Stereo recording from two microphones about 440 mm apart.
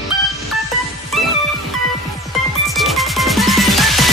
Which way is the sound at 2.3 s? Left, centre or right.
Centre.